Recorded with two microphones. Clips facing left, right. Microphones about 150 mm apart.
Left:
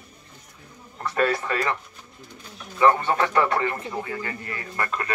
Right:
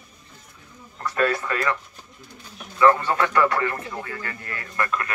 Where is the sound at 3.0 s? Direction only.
25° left (ahead or behind).